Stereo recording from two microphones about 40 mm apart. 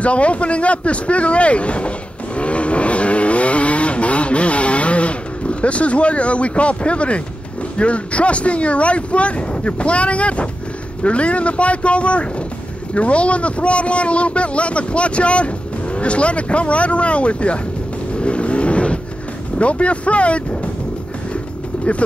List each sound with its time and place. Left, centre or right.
0.0 s a sound: left
7.7 s a man's voice: left
18.2 s vehicle: left
19.6 s a man's voice: left